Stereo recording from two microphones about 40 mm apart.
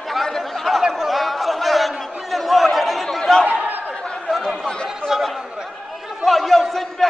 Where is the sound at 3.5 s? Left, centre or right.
Right.